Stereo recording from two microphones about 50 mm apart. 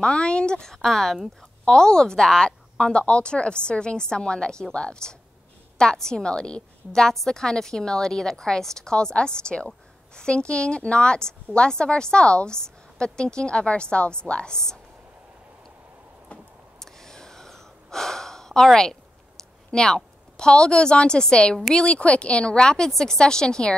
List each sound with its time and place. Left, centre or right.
0.0 s a woman's voice: left; by 1.7 s centre
1.7 s a woman's voice: centre
16.8 s gasp: centre
19.7 s a woman's voice: centre